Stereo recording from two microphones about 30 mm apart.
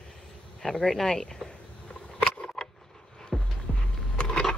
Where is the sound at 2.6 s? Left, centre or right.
Centre.